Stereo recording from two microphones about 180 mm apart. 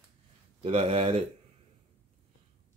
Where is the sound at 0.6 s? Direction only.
30° right (ahead or behind).